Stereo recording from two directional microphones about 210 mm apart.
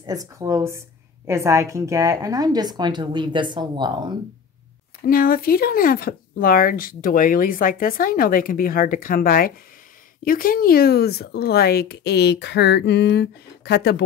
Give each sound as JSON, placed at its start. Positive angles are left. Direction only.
{"t": 0.0, "sound": "a woman's voice", "side_deg": -15}
{"t": 5.0, "sound": "speech", "side_deg": 45}